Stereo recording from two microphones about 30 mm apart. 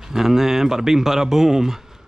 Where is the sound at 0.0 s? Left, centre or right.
Centre.